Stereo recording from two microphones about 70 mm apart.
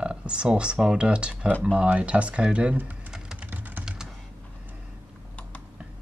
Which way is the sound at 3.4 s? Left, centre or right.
Right.